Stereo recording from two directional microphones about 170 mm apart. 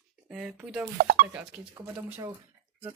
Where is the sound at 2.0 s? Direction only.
15° right (ahead or behind).